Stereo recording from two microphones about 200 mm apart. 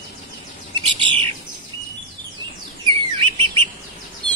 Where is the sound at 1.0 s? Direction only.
25° right (ahead or behind).